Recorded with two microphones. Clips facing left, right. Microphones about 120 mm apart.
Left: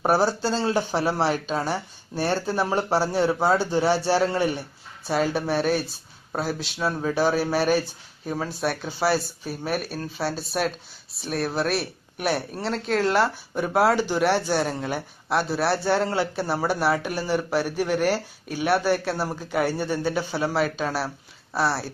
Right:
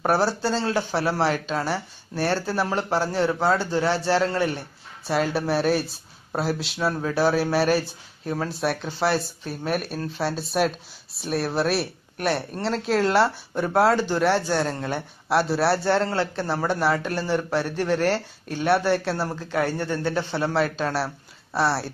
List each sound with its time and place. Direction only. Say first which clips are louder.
0.0 s speech: left 1 dB; 5° left (ahead or behind)
0.7 s speech: left 1 dB; 15° left (ahead or behind); by 21.9 s centre (ahead or behind)